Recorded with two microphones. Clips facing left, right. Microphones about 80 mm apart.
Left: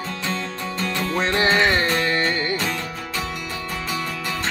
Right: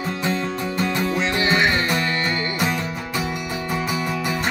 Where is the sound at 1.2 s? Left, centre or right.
Left.